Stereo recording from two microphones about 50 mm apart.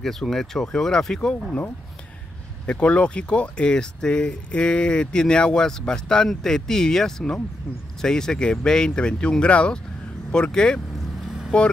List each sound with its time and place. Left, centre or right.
0.0 s speech: centre
2.6 s speech: left